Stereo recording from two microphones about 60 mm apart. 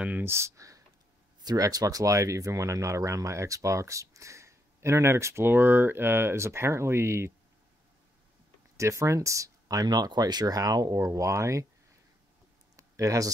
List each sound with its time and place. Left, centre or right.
0.2 s speech: right
0.6 s a sound: right
1.5 s speech: right
8.7 s speech: right
11.1 s speech: right
12.7 s a sound: right